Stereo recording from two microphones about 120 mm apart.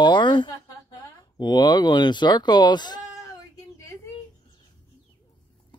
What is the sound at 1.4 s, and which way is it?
Speech, 35° left (ahead or behind).